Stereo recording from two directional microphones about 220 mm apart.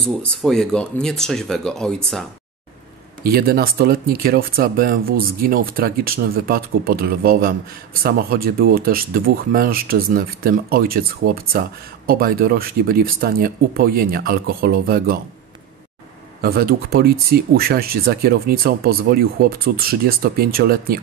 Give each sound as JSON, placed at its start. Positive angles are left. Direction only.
{"t": 0.4, "sound": "speech", "side_deg": 0}
{"t": 3.3, "sound": "speech", "side_deg": -45}
{"t": 16.3, "sound": "speech", "side_deg": -45}